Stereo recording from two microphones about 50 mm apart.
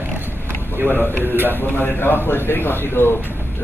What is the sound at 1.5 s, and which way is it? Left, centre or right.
A man's voice, left.